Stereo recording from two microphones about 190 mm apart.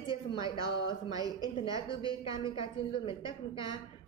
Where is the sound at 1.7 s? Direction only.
25° left (ahead or behind).